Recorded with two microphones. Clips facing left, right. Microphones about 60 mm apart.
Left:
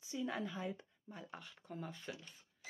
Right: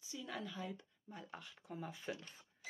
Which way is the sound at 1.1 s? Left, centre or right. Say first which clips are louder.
Even; centre.